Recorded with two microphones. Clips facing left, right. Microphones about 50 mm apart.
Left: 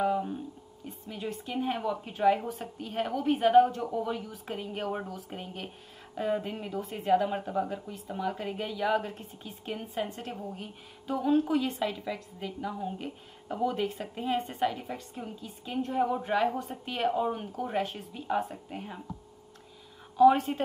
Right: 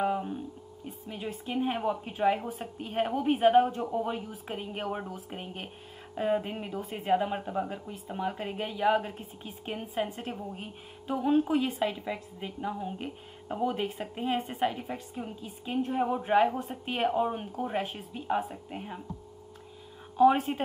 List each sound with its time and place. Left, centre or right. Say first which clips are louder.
1.1 s a woman's voice: right 1 dB; right
6.8 s a woman's voice: left 2 dB; centre
8.2 s a woman's voice: even; right
10.0 s a woman's voice: right 1 dB; centre
12.5 s speech: right 1 dB; centre
13.0 s a woman's voice: right 1 dB; right
18.2 s speech: even; centre
20.2 s a woman's voice: left 1 dB; right